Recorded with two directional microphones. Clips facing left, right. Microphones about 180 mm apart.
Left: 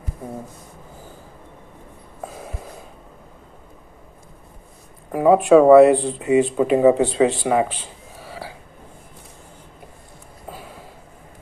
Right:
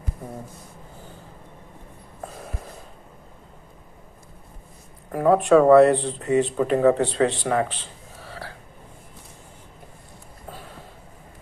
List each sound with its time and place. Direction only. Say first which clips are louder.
2.2 s snort: left 3 dB; 5° left (ahead or behind)
5.1 s speech: left 4 dB; 10° left (ahead or behind)